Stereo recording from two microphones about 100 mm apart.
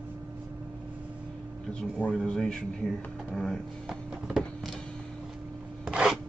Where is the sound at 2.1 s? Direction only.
5° left (ahead or behind).